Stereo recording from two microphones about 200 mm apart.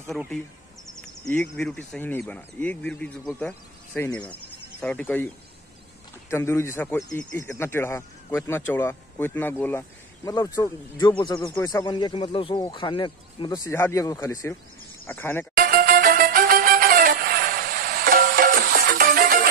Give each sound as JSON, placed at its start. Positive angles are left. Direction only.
{"t": 1.3, "sound": "speech", "side_deg": 5}
{"t": 6.3, "sound": "speech", "side_deg": 10}
{"t": 15.5, "sound": "music", "side_deg": -45}